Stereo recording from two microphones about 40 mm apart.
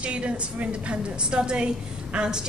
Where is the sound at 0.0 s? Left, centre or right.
Right.